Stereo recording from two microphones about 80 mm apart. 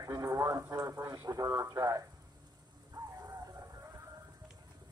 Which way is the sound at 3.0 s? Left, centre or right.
Right.